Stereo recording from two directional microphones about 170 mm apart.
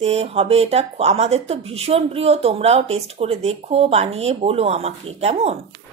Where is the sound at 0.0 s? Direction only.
40° right (ahead or behind).